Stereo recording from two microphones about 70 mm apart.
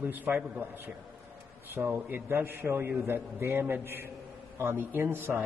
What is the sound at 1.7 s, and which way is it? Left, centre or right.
A man's voice, right.